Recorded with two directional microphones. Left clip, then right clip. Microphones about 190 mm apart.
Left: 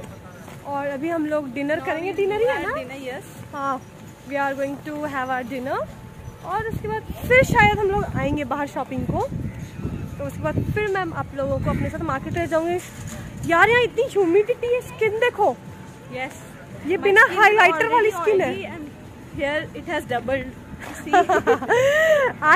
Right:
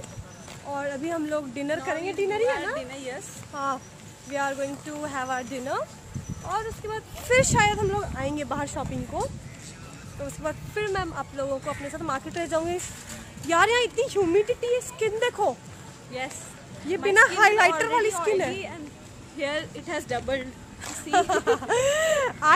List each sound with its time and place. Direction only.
0.7 s speech: 20° right (ahead or behind)
2.8 s a woman's voice: 30° right (ahead or behind)
3.5 s speech: 10° right (ahead or behind)
15.0 s speech: 5° right (ahead or behind)
16.1 s speech: 30° right (ahead or behind)
16.9 s speech: 5° right (ahead or behind); by 20.4 s 20° right (ahead or behind)
21.1 s speech: 10° left (ahead or behind)